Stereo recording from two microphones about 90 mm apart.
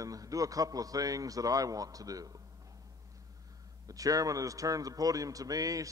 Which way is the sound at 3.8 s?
40° right (ahead or behind).